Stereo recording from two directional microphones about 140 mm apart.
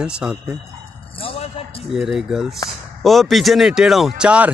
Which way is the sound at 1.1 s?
45° left (ahead or behind).